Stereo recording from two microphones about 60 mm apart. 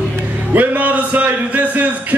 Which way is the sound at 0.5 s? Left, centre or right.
Right.